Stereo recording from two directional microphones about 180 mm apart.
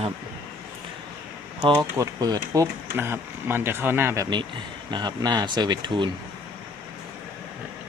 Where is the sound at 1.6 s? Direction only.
25° right (ahead or behind).